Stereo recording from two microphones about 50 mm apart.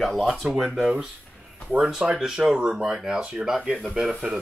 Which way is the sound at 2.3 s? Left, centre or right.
Centre.